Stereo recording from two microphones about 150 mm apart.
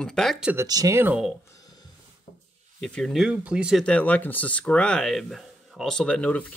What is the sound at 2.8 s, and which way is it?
Speech, 5° left (ahead or behind).